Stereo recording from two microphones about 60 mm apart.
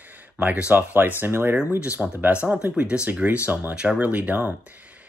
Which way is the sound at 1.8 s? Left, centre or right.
Centre.